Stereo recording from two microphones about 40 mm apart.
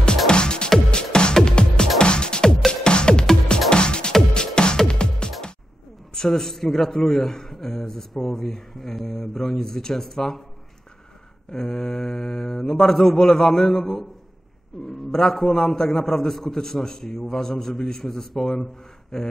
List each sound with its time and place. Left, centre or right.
0.3 s music: left
6.1 s a man's voice: centre
11.5 s a man's voice: centre
15.0 s a man's voice: centre